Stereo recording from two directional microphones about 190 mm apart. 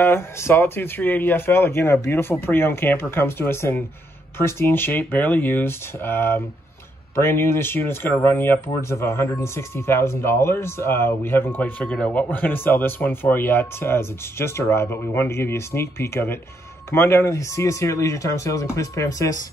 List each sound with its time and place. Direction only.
0.0 s speech: 15° left (ahead or behind)